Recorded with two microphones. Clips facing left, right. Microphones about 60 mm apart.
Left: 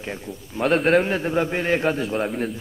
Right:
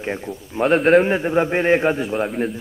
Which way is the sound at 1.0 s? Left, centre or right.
Centre.